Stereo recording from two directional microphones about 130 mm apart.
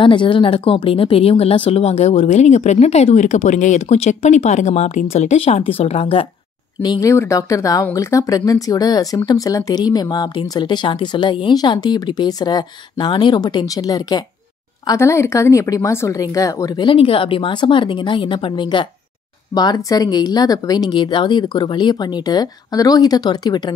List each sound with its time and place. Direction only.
0.0 s speech: 40° left (ahead or behind)
6.8 s speech: 30° left (ahead or behind)
16.8 s speech: 45° left (ahead or behind)